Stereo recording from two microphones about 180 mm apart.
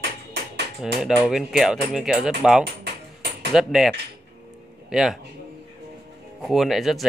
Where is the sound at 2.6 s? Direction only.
65° right (ahead or behind).